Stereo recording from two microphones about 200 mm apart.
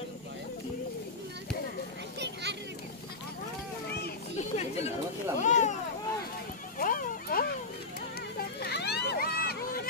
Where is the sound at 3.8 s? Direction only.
55° left (ahead or behind).